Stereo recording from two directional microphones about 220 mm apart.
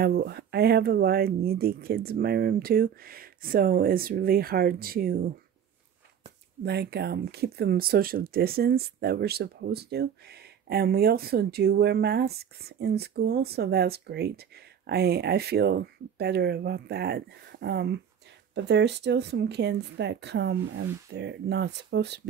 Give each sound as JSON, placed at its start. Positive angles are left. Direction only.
{"t": 0.0, "sound": "speech", "side_deg": -45}
{"t": 6.6, "sound": "speech", "side_deg": -50}